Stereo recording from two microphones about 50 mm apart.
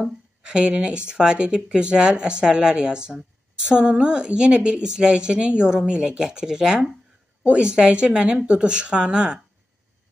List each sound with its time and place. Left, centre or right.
0.4 s speech: centre